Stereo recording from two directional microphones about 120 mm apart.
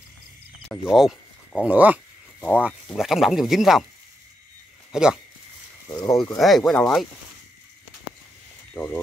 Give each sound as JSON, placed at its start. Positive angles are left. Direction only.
{"t": 0.8, "sound": "speech", "side_deg": -5}
{"t": 1.6, "sound": "speech", "side_deg": -15}
{"t": 3.0, "sound": "speech", "side_deg": -5}
{"t": 4.9, "sound": "speech", "side_deg": -5}
{"t": 5.9, "sound": "speech", "side_deg": 35}
{"t": 6.3, "sound": "speech", "side_deg": 0}
{"t": 8.7, "sound": "speech", "side_deg": 5}